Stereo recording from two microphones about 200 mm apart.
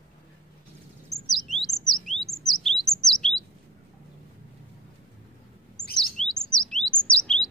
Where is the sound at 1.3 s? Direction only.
Centre (ahead or behind).